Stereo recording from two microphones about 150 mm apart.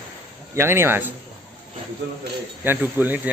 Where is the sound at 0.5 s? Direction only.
15° right (ahead or behind).